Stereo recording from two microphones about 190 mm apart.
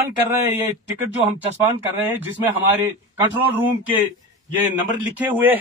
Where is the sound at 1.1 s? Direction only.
10° right (ahead or behind).